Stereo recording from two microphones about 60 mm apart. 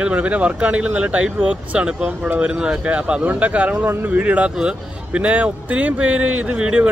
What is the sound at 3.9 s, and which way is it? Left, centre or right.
Speech, right.